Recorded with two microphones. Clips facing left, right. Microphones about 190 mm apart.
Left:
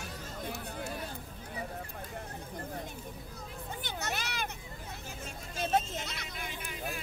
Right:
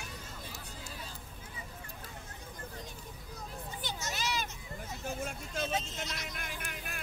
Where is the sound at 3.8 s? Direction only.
60° left (ahead or behind).